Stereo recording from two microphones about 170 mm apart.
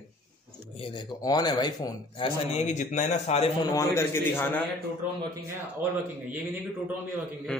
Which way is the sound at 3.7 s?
15° left (ahead or behind).